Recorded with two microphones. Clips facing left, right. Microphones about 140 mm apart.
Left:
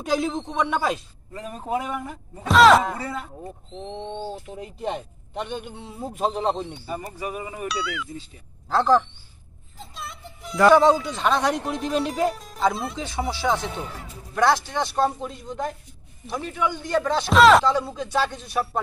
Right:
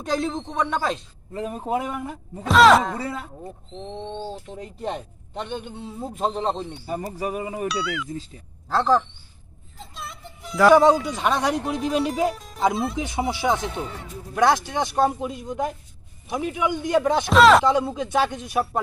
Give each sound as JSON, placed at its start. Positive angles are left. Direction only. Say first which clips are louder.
{"t": 0.0, "sound": "speech", "louder": "left 1 dB", "side_deg": 5}
{"t": 1.3, "sound": "a man's voice", "louder": "right 2 dB", "side_deg": -20}
{"t": 2.4, "sound": "speech", "louder": "even", "side_deg": 0}
{"t": 7.2, "sound": "speech", "louder": "right 4 dB", "side_deg": -35}
{"t": 7.6, "sound": "speech", "louder": "left 1 dB", "side_deg": 0}
{"t": 12.9, "sound": "a man's voice", "louder": "right 3 dB", "side_deg": -15}
{"t": 17.3, "sound": "speech", "louder": "even", "side_deg": 0}
{"t": 17.6, "sound": "a man's voice", "louder": "right 2 dB", "side_deg": -20}